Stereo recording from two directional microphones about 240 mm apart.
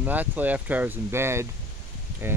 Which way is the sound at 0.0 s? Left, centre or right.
Centre.